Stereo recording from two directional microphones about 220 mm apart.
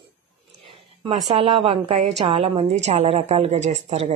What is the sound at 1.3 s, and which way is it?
A woman's voice, 25° right (ahead or behind).